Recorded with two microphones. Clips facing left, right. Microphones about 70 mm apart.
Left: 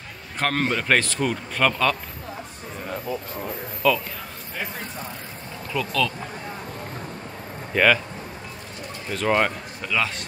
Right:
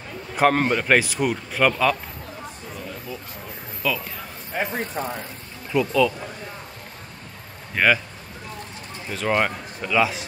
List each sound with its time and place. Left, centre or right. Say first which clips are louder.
0.4 s speech: right 5 dB; centre
3.8 s a man's voice: left 5 dB; centre
4.6 s speech: right 6 dB; right
5.7 s speech: right 5 dB; centre
7.7 s speech: left 1 dB; centre
9.1 s a man's voice: left 1 dB; centre